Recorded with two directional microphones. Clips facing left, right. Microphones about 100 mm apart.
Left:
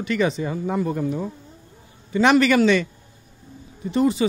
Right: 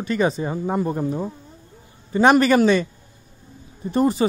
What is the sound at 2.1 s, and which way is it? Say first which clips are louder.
Speech: right 2 dB; 35° right (ahead or behind).